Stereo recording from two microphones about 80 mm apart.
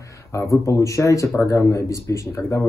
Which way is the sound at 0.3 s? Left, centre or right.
Left.